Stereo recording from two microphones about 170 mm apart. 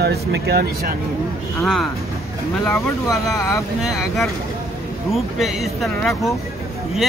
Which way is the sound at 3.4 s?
20° left (ahead or behind).